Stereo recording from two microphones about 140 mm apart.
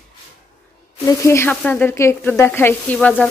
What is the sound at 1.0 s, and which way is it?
Sizzle, 20° left (ahead or behind).